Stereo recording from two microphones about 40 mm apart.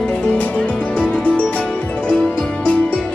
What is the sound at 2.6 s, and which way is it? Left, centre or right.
Music, left.